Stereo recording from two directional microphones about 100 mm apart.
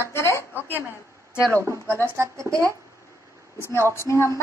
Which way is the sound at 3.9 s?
25° left (ahead or behind).